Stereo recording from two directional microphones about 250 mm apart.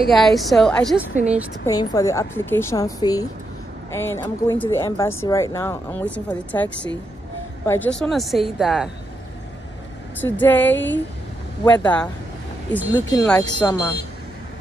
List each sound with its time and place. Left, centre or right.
0.1 s a woman's voice: centre
1.7 s a woman's voice: centre
10.2 s a woman's voice: centre